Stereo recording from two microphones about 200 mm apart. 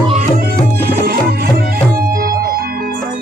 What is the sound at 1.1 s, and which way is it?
Music, 50° right (ahead or behind).